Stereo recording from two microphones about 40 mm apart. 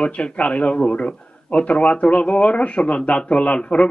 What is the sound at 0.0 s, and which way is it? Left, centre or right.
A man's voice, left.